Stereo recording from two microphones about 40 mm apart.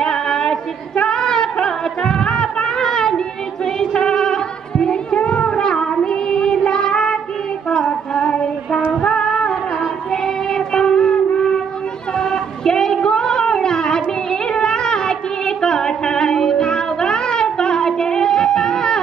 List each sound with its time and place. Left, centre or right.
0.0 s a sound: centre
3.6 s music: centre
7.7 s female singing: left
8.9 s music: centre
10.1 s child singing: centre
12.2 s a sound: centre